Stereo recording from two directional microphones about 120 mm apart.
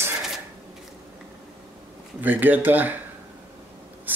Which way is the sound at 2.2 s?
15° right (ahead or behind).